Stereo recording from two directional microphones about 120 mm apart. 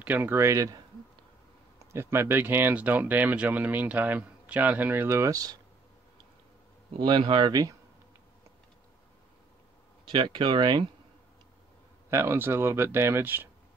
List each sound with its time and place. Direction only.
0.0 s speech: 15° right (ahead or behind)
1.9 s speech: 20° right (ahead or behind)
7.1 s speech: 40° right (ahead or behind)
10.1 s speech: 40° right (ahead or behind)
12.1 s speech: 20° right (ahead or behind)